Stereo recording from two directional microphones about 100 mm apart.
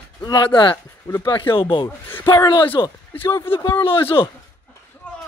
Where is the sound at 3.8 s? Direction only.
65° left (ahead or behind).